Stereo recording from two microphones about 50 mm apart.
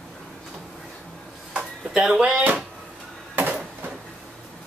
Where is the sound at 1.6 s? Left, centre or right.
Centre.